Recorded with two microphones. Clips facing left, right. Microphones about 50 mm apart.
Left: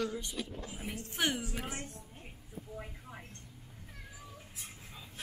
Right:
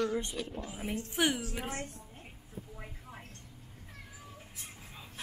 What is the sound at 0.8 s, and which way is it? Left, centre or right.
Speech, centre.